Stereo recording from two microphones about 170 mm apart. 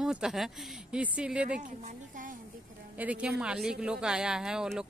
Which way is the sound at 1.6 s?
50° right (ahead or behind).